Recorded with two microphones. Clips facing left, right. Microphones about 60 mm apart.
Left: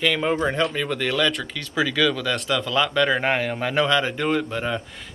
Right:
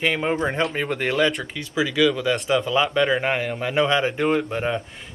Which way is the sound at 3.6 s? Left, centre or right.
Right.